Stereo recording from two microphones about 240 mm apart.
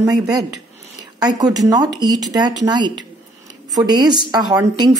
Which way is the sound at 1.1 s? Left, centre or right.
Centre.